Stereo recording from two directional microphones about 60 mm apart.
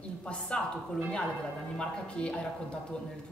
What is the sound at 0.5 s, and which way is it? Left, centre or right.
Speech, left.